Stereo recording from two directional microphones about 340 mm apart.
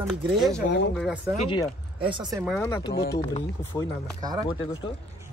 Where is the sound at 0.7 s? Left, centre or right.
Left.